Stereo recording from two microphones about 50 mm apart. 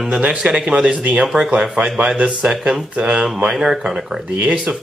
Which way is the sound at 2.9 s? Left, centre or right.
Right.